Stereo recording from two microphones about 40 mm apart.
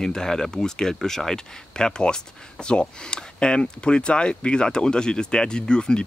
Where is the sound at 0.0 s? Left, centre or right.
Centre.